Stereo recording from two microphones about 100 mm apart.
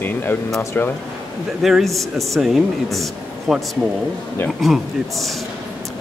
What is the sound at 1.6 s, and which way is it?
Speech, centre (ahead or behind).